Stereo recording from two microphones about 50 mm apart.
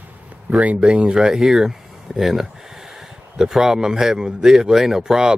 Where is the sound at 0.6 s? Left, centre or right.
Right.